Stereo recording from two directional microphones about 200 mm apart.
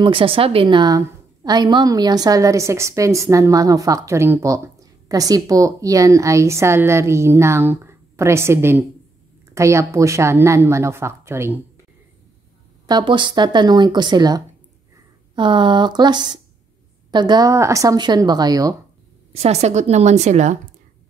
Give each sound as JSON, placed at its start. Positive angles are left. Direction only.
{"t": 0.0, "sound": "a woman's voice", "side_deg": -25}
{"t": 12.8, "sound": "speech", "side_deg": -20}
{"t": 19.3, "sound": "a woman's voice", "side_deg": -35}